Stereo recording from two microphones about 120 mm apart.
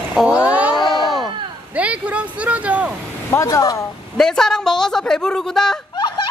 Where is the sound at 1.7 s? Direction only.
10° right (ahead or behind).